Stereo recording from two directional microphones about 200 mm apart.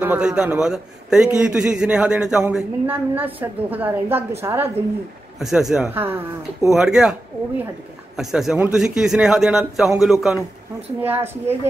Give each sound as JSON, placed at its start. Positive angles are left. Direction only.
{"t": 0.0, "sound": "a man's voice", "side_deg": -5}
{"t": 5.4, "sound": "a man's voice", "side_deg": 0}